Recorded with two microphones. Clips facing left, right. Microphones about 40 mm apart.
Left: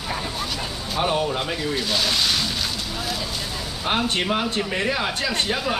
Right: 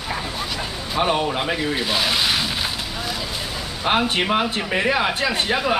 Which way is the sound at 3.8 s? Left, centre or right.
Centre.